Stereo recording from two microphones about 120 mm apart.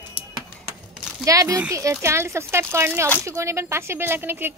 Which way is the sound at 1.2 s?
30° right (ahead or behind).